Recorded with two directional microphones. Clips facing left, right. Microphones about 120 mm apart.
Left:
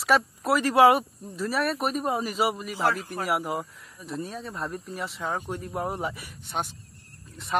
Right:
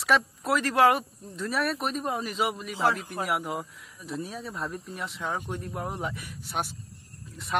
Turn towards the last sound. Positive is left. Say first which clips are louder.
# left 2 dB
turn(degrees=0)  # may be behind; listen again after turning